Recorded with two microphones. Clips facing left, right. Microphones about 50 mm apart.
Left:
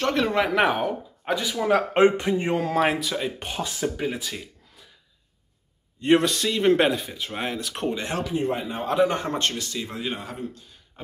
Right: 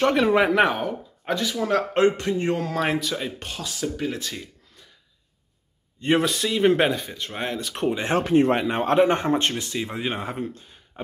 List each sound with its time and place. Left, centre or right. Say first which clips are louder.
0.0 s speech: right 4 dB; centre
0.5 s speech: right 1 dB; centre
3.3 s speech: left 2 dB; left; by 4.8 s centre
5.9 s speech: left 2 dB; centre
8.0 s speech: right 5 dB; right
8.3 s speech: right 10 dB; right
8.9 s speech: right 2 dB; right
9.3 s speech: right 4 dB; right